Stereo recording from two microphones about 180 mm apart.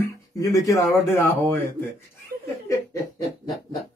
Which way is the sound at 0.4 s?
20° left (ahead or behind).